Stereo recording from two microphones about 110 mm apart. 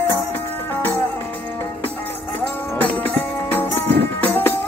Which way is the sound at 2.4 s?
15° left (ahead or behind).